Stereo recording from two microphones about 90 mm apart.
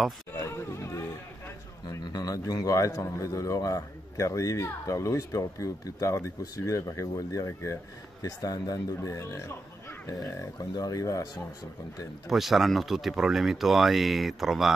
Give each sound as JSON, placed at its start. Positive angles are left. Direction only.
{"t": 0.4, "sound": "music", "side_deg": 30}
{"t": 1.9, "sound": "a man's voice", "side_deg": 45}
{"t": 10.7, "sound": "speech", "side_deg": 45}
{"t": 12.3, "sound": "speech", "side_deg": 0}